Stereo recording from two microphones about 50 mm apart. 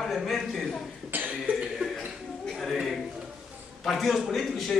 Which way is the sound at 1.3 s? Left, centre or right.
Right.